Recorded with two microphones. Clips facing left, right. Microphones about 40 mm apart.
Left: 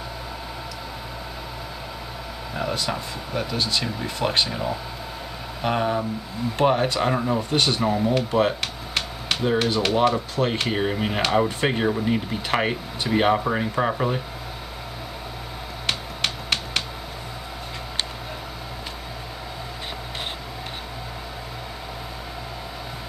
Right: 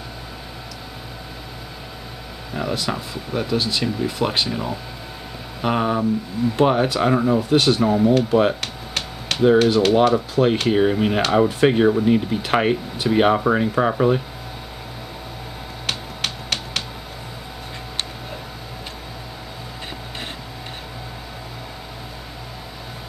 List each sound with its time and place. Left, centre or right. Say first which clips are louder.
2.5 s speech: right 2 dB; centre
8.1 s a sound: right 4 dB; centre
9.4 s speech: right 8 dB; centre
15.9 s finger snapping: even; centre